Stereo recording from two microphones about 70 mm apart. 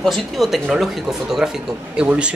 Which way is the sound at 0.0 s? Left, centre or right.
Centre.